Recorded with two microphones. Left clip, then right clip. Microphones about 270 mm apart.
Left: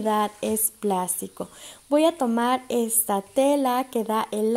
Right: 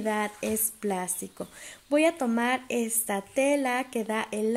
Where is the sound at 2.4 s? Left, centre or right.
Left.